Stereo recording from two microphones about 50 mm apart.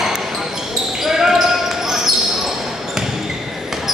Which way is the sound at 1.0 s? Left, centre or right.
Centre.